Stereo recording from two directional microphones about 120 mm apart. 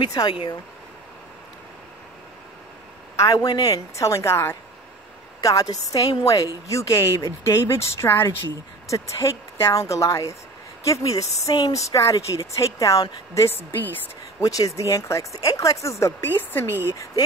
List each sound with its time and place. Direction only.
0.0 s speech: 35° left (ahead or behind)
3.2 s a woman's voice: 30° left (ahead or behind)